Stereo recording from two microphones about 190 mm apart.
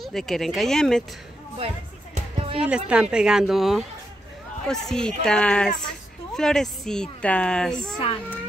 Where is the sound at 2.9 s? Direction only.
5° right (ahead or behind).